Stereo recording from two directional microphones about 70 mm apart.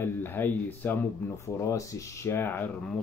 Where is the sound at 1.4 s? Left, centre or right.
Left.